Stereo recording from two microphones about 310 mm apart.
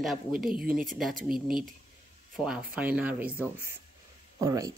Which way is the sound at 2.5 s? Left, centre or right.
Centre.